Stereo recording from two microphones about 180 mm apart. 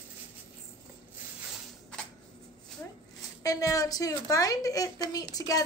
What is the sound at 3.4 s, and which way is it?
A woman's voice, 20° left (ahead or behind).